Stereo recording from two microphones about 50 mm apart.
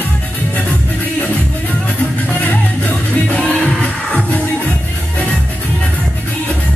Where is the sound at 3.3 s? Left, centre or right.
Centre.